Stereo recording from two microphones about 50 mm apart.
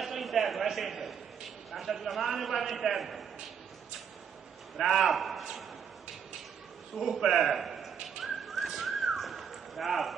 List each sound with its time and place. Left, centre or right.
0.0 s a sound: centre
1.7 s a man's voice: centre
4.7 s a man's voice: centre
7.0 s bird: centre